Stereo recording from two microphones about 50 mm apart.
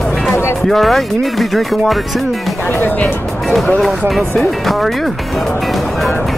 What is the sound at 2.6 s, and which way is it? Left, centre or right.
Speech, left.